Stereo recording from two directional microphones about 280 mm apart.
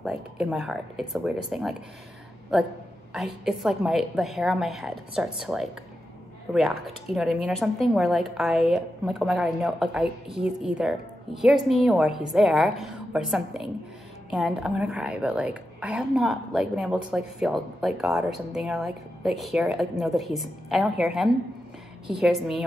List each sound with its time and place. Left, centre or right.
0.0 s a woman's voice: centre
3.1 s a woman's voice: centre